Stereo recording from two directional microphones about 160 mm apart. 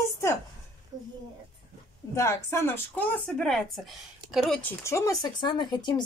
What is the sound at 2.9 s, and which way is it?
A woman's voice, 5° left (ahead or behind).